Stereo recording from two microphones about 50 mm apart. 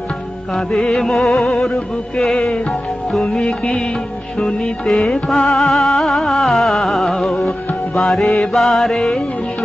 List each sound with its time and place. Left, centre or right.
0.6 s music: centre
2.5 s music: left